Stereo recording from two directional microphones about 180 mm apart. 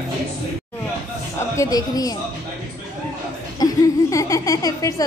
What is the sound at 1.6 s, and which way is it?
Speech, 20° left (ahead or behind).